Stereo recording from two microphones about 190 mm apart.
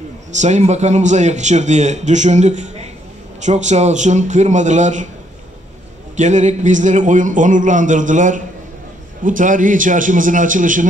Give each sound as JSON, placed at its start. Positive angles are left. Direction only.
{"t": 0.3, "sound": "speech", "side_deg": -40}
{"t": 6.1, "sound": "a man's voice", "side_deg": -40}